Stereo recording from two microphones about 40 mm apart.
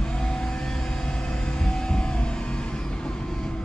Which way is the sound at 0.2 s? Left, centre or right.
Centre.